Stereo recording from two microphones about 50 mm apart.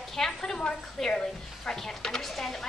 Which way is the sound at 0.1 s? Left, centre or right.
Centre.